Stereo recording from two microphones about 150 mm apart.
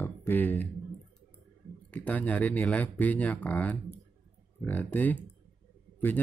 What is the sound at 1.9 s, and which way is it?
Speech, 10° left (ahead or behind).